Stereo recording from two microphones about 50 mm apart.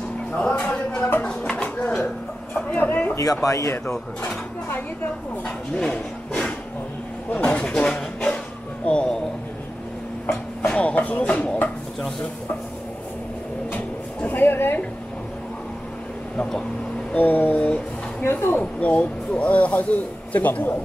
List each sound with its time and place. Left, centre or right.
0.4 s music: left
0.7 s a sound: left
2.5 s a sound: left
3.4 s speech: left
3.8 s speech: centre
5.8 s a sound: centre
7.3 s speech: left
7.6 s speech: centre
10.7 s speech: left
13.7 s a sound: left
17.1 s speech: left
17.6 s speech: centre
18.2 s speech: left
18.8 s speech: left